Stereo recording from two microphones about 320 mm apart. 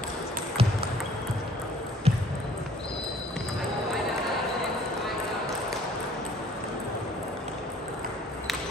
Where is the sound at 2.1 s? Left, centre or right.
Centre.